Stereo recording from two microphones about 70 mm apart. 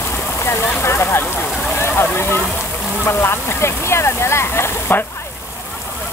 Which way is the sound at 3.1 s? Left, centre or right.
Left.